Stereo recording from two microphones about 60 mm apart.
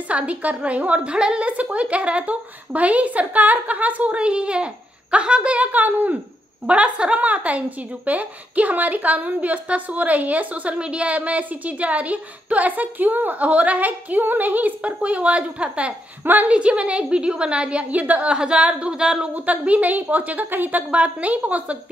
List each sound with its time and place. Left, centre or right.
0.1 s a woman's voice: right
6.6 s a woman's voice: centre
19.3 s a woman's voice: right